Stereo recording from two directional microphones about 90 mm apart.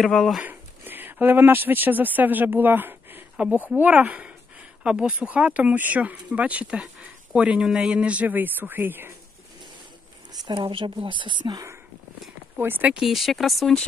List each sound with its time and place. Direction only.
0.0 s speech: 5° left (ahead or behind)
0.4 s speech: 20° right (ahead or behind)
10.5 s speech: 80° right; by 11.5 s 60° right (ahead or behind)
11.5 s speech: 30° right (ahead or behind)
12.9 s speech: centre (ahead or behind)